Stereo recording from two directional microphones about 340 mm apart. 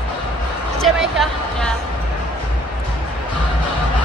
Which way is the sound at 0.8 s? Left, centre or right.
Centre.